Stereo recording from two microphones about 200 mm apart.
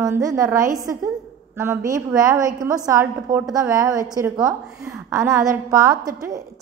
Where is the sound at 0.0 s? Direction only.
15° right (ahead or behind).